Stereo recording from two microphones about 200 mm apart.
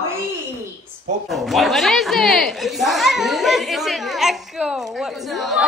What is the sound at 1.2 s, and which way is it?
Speech, centre (ahead or behind).